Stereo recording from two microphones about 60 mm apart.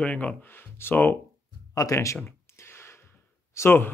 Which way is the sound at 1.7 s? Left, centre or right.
Left.